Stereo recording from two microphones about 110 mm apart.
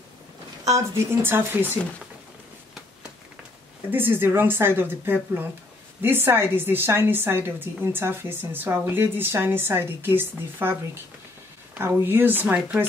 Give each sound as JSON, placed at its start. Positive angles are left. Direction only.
{"t": 0.7, "sound": "a woman's voice", "side_deg": -30}
{"t": 3.9, "sound": "a woman's voice", "side_deg": -20}
{"t": 12.0, "sound": "speech", "side_deg": -20}